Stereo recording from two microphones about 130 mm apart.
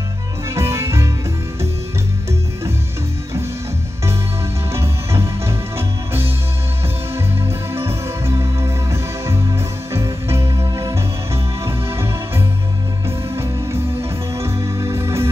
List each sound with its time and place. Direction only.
0.6 s music: 20° right (ahead or behind)
4.7 s music: 20° right (ahead or behind)
7.4 s music: 20° right (ahead or behind)